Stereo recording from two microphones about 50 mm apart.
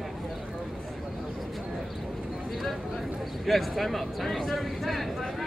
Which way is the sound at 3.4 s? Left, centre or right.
Centre.